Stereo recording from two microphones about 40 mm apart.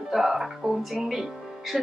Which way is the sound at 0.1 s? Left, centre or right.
Centre.